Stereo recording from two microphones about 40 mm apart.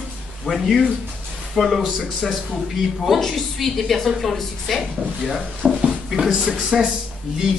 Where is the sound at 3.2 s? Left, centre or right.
Centre.